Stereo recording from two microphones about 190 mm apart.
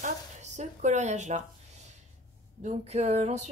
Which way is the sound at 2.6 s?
35° right (ahead or behind).